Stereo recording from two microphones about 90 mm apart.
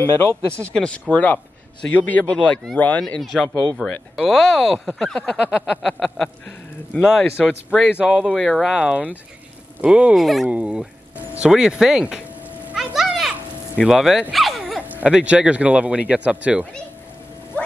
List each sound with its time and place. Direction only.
0.0 s speech: 25° left (ahead or behind)
0.7 s speech: 10° left (ahead or behind)
8.0 s speech: 10° right (ahead or behind)
8.4 s speech: centre (ahead or behind)
10.1 s speech: centre (ahead or behind)
10.4 s speech: 10° right (ahead or behind)
12.7 s children playing: 5° right (ahead or behind)
13.8 s speech: 5° right (ahead or behind)
14.3 s dog: centre (ahead or behind)
14.8 s a sound: 20° right (ahead or behind)
15.0 s speech: 10° right (ahead or behind)